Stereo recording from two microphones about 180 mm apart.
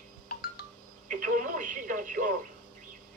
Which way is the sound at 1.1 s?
50° right (ahead or behind).